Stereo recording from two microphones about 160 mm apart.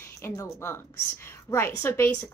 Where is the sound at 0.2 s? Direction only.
15° left (ahead or behind).